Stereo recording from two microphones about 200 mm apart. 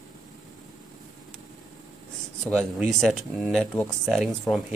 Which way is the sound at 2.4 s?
5° left (ahead or behind).